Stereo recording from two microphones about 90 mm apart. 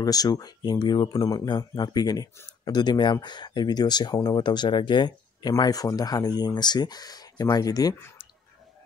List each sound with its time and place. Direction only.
0.0 s speech: 45° left (ahead or behind)
1.1 s speech: 45° left (ahead or behind)
5.5 s speech: 45° left (ahead or behind)